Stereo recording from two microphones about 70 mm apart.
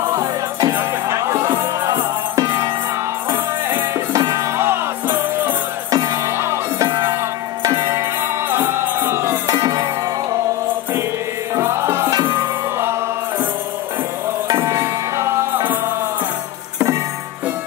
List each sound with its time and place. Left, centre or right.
0.1 s music: right
3.3 s music: right
4.1 s music: right
4.6 s music: right
5.9 s music: right
6.2 s music: right
7.8 s music: right
9.6 s music: right
11.6 s music: right
14.6 s music: right